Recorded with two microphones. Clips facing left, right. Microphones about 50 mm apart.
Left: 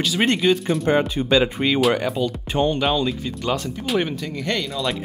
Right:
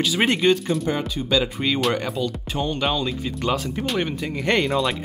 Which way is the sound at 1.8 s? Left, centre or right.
Centre.